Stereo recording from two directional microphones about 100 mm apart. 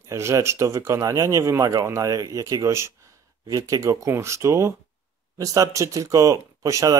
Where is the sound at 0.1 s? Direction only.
30° right (ahead or behind).